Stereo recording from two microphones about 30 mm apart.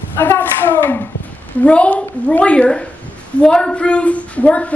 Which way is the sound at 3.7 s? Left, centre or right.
Left.